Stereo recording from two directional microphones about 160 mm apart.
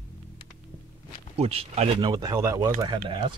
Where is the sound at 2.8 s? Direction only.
30° right (ahead or behind).